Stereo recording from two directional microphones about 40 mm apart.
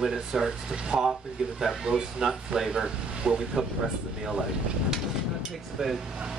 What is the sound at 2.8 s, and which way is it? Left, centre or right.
Speech, right.